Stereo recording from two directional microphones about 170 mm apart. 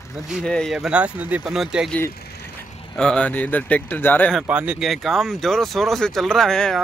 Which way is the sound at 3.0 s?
5° left (ahead or behind).